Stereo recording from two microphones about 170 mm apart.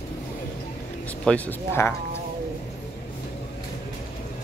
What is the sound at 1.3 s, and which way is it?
Speech, 10° left (ahead or behind).